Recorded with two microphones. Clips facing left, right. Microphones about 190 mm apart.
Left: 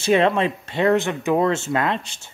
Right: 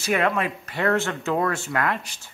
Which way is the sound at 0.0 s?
25° left (ahead or behind).